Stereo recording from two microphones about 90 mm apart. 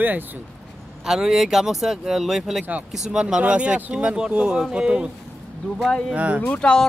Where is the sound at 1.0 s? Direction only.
5° right (ahead or behind).